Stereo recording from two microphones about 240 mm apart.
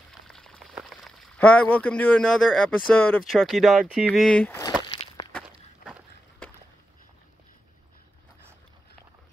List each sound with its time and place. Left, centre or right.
0.3 s speech: centre
5.0 s walk: left